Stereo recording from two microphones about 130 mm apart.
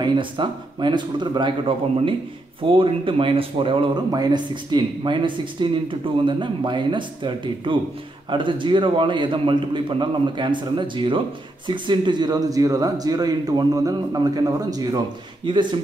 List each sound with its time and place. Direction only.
0.0 s speech: 40° right (ahead or behind)
2.7 s a man's voice: 40° right (ahead or behind)